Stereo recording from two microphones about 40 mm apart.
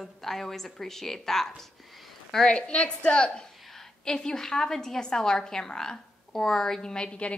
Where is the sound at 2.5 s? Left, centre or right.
Left.